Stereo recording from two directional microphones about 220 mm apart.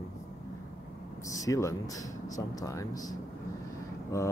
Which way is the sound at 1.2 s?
15° left (ahead or behind).